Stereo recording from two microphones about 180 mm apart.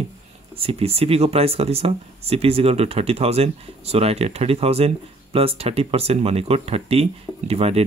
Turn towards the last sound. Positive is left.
turn(degrees=-35)  # may be behind; listen again after turning